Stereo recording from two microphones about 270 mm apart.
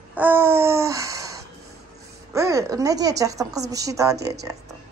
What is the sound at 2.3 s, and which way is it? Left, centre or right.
A woman's voice, centre.